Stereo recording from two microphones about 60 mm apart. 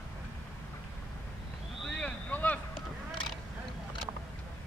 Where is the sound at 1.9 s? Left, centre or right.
Left.